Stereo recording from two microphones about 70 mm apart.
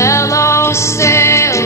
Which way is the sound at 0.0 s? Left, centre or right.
Left.